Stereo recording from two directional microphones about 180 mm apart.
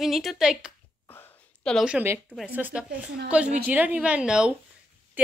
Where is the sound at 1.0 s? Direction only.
10° left (ahead or behind).